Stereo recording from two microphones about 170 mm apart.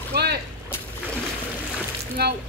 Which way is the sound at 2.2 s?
70° right (ahead or behind).